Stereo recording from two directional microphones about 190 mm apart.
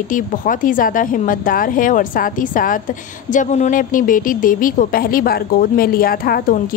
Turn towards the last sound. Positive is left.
turn(degrees=50)  # may be behind; listen again after turning